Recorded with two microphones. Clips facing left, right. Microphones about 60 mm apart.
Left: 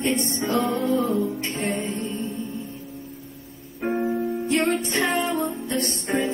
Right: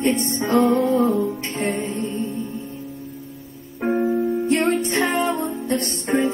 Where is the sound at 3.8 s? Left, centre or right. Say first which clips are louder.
Right 4 dB; centre.